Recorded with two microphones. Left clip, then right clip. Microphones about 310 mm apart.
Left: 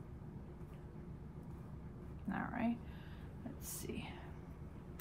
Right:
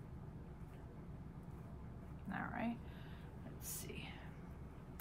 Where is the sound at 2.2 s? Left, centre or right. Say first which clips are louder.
Left 3 dB; centre.